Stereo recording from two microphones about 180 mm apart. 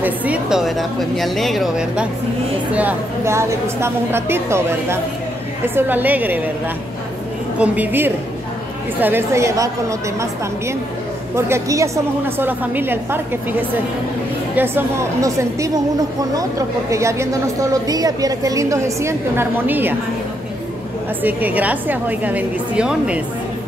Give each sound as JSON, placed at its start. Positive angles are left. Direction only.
{"t": 0.0, "sound": "a woman's voice", "side_deg": -10}
{"t": 7.5, "sound": "a woman's voice", "side_deg": -10}
{"t": 11.3, "sound": "a woman's voice", "side_deg": -15}
{"t": 21.2, "sound": "a woman's voice", "side_deg": -10}